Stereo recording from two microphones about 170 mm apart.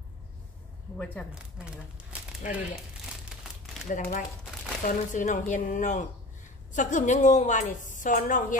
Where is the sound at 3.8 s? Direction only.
50° left (ahead or behind).